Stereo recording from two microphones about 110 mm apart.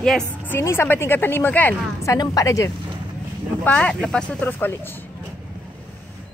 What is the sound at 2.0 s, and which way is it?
Speech, 30° left (ahead or behind).